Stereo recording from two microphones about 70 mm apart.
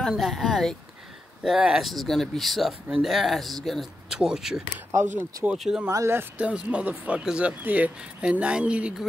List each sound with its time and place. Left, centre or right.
0.1 s speech: centre
1.4 s speech: centre
1.9 s speech: centre
5.0 s speech: right
5.6 s speech: centre
5.9 s speech: right
6.3 s speech: centre